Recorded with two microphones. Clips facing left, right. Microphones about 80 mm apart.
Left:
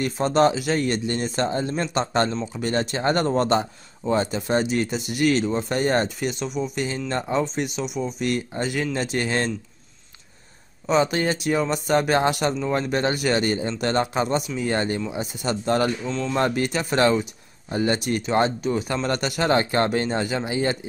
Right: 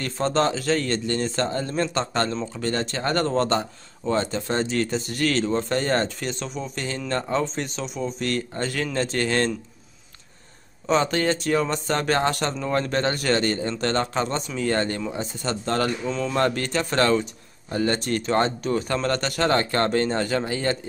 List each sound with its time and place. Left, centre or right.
0.0 s speech: centre
10.9 s speech: centre
16.1 s speech: centre
16.3 s speech: centre